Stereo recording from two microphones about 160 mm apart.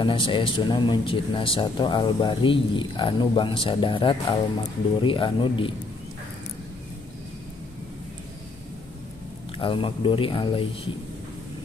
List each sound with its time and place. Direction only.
0.0 s speech: 30° left (ahead or behind)
9.6 s speech: 30° left (ahead or behind)